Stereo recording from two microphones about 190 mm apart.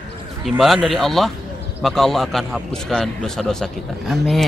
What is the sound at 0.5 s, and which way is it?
A man's voice, centre (ahead or behind).